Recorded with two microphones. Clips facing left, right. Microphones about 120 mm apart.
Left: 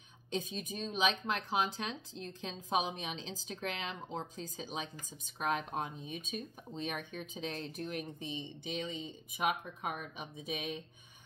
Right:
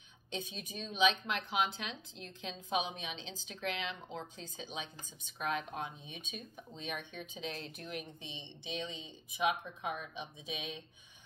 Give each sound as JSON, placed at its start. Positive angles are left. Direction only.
{"t": 0.3, "sound": "a woman's voice", "side_deg": 40}